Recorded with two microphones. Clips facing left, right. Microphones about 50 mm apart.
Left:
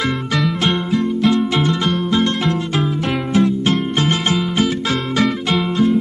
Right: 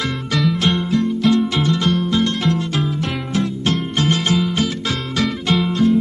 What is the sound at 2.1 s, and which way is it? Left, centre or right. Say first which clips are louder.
Music: left 1 dB; left.